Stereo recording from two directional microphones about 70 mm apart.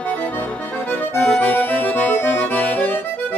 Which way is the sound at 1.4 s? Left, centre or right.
Left.